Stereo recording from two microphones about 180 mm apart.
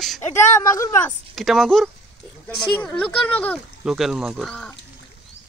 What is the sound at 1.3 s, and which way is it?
Speech, centre (ahead or behind).